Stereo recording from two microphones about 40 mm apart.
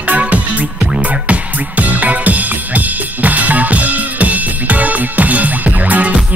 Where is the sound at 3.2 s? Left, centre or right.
Right.